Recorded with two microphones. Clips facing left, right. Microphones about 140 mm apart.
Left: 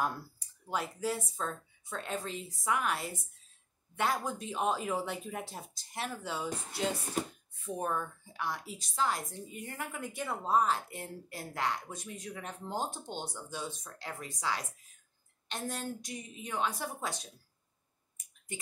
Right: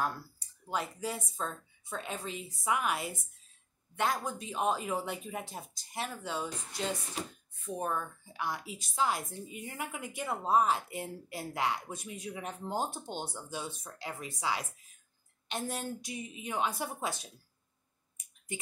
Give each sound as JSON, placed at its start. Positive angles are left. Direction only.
{"t": 0.7, "sound": "speech", "side_deg": 0}
{"t": 7.2, "sound": "speech", "side_deg": 50}
{"t": 7.6, "sound": "a woman's voice", "side_deg": 0}